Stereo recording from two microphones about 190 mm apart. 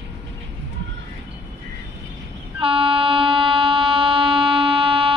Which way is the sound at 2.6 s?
30° right (ahead or behind).